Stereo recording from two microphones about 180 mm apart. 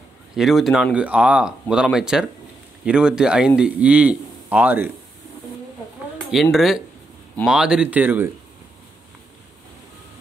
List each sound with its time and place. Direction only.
0.4 s a man's voice: centre (ahead or behind)
6.3 s a man's voice: centre (ahead or behind)